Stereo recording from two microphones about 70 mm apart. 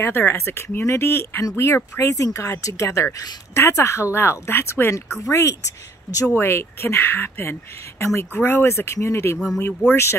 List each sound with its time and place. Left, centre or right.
0.0 s speech: left
2.0 s speech: left